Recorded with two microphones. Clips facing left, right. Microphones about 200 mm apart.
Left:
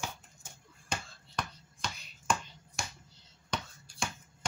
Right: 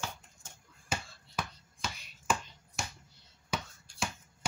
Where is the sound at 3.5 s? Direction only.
5° right (ahead or behind).